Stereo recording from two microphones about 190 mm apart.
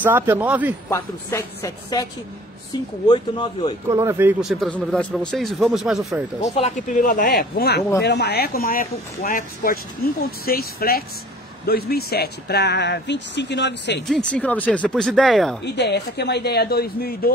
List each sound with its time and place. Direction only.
0.0 s a man's voice: 10° right (ahead or behind)
0.8 s a woman's voice: 15° left (ahead or behind)
3.1 s speech: 25° left (ahead or behind)
3.9 s a man's voice: 15° right (ahead or behind)
6.5 s speech: 40° left (ahead or behind)
7.3 s speech: 55° left (ahead or behind)
14.0 s a man's voice: 5° left (ahead or behind)
15.6 s speech: 60° left (ahead or behind)